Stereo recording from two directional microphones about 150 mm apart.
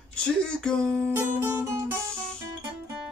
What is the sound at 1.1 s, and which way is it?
Music, 15° right (ahead or behind).